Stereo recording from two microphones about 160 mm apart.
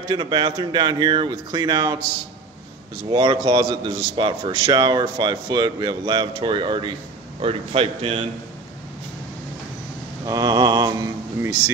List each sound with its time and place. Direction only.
0.1 s a man's voice: 30° right (ahead or behind)
3.1 s a man's voice: 35° right (ahead or behind)
10.2 s speech: 20° right (ahead or behind)